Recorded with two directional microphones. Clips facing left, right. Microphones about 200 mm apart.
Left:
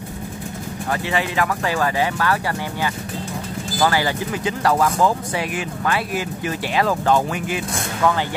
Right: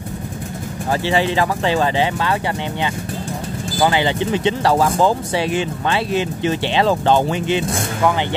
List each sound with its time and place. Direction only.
1.0 s speech: 30° right (ahead or behind)
3.8 s speech: 20° right (ahead or behind)